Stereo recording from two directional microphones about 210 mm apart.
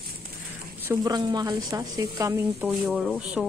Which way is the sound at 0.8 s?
15° right (ahead or behind).